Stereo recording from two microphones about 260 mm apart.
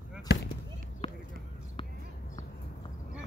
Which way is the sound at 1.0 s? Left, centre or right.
Left.